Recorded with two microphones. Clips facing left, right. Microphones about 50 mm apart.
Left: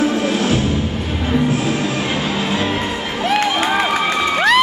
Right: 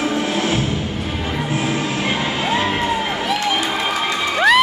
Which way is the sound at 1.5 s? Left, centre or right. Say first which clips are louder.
Left 2 dB; right.